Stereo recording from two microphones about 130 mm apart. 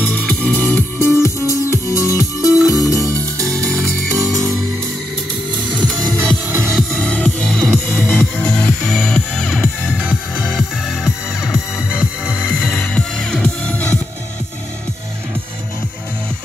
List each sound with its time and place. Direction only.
0.1 s music: 10° left (ahead or behind)
3.0 s music: 25° right (ahead or behind)
5.7 s music: 35° right (ahead or behind)
6.1 s music: 15° right (ahead or behind)
6.6 s music: 5° left (ahead or behind)
12.5 s music: 10° left (ahead or behind)